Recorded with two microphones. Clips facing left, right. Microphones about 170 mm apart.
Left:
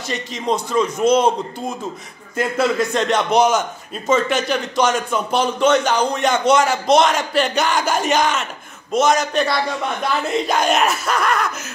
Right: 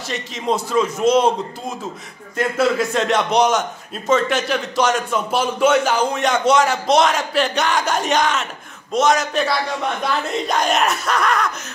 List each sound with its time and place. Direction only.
0.1 s a man's voice: centre (ahead or behind)
2.3 s a man's voice: centre (ahead or behind)